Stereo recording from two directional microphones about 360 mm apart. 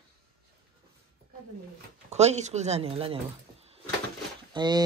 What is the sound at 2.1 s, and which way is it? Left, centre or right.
Speech, centre.